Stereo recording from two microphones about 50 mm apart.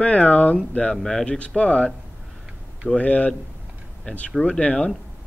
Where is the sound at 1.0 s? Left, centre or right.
Centre.